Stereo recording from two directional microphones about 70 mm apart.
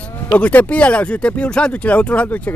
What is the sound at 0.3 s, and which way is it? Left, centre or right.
Speech, left.